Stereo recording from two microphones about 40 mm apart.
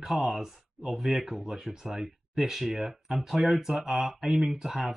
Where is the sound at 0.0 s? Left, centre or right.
Centre.